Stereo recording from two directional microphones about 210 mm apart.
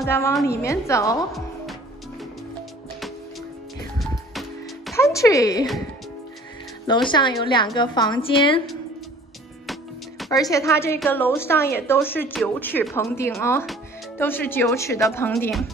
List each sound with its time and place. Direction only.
0.0 s speech: 10° left (ahead or behind)
4.3 s music: centre (ahead or behind)
4.9 s speech: 15° left (ahead or behind)
6.9 s a woman's voice: 20° left (ahead or behind)
9.7 s music: centre (ahead or behind)
10.3 s speech: 15° left (ahead or behind)
15.3 s speech: centre (ahead or behind)